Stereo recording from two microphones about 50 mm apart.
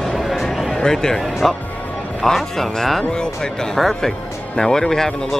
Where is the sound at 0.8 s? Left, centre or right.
Centre.